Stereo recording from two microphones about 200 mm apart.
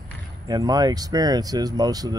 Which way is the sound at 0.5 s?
20° right (ahead or behind).